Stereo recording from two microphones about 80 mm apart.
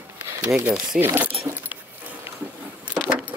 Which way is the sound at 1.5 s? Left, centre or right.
Right.